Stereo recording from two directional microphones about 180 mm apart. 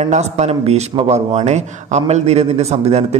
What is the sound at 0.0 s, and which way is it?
A man's voice, 40° right (ahead or behind).